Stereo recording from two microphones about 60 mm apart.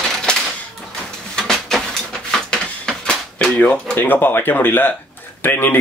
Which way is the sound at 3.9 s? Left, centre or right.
Left.